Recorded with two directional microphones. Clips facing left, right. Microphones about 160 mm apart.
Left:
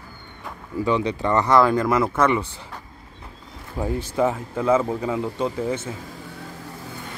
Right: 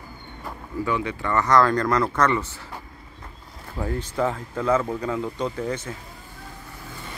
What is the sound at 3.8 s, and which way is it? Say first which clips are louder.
Speech: left 3 dB; 15° left (ahead or behind).